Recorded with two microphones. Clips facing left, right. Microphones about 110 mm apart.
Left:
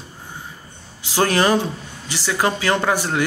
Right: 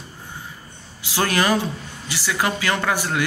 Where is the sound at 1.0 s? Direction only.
30° left (ahead or behind).